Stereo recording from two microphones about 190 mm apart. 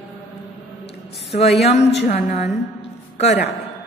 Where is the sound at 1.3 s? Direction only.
35° left (ahead or behind).